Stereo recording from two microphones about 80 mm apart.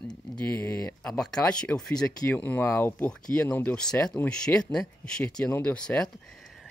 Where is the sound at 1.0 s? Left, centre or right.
Centre.